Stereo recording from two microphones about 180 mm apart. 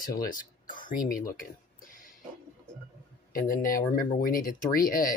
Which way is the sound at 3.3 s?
55° left (ahead or behind).